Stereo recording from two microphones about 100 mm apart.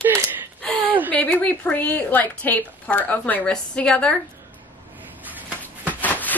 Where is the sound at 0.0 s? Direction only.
25° right (ahead or behind).